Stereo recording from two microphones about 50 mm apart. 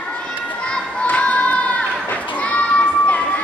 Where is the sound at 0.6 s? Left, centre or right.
Left.